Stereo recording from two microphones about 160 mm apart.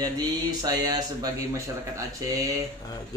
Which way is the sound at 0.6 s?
25° right (ahead or behind).